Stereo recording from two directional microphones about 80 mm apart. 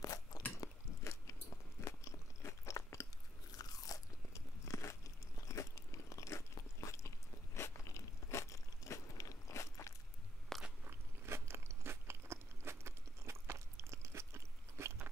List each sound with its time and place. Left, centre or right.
0.0 s a sound: left
1.9 s biting: left
3.5 s crunch: left
10.5 s biting: centre
10.9 s biting: right